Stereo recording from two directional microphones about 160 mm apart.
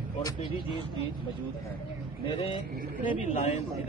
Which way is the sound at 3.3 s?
50° left (ahead or behind).